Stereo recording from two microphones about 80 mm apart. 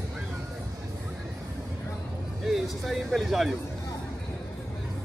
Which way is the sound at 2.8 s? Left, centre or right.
Centre.